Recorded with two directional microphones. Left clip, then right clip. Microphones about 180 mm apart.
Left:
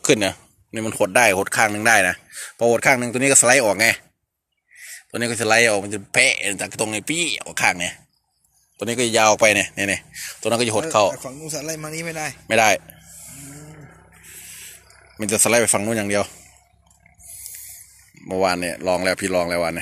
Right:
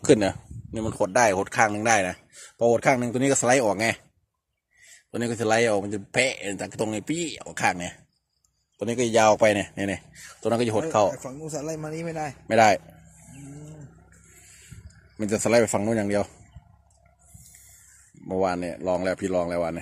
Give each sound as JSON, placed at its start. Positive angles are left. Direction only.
{"t": 0.0, "sound": "speech", "side_deg": -30}
{"t": 0.7, "sound": "speech", "side_deg": -15}
{"t": 0.9, "sound": "speech", "side_deg": 0}
{"t": 5.1, "sound": "speech", "side_deg": -20}
{"t": 12.4, "sound": "speech", "side_deg": -25}
{"t": 15.1, "sound": "speech", "side_deg": -20}
{"t": 18.3, "sound": "speech", "side_deg": -15}